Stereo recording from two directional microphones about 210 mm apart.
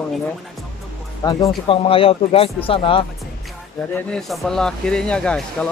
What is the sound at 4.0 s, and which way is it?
Speech, 5° left (ahead or behind).